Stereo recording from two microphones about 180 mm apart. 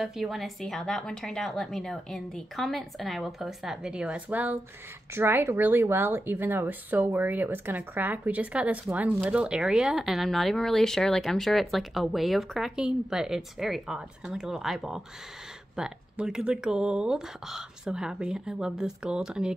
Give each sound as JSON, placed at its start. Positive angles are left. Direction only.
{"t": 0.0, "sound": "speech", "side_deg": 0}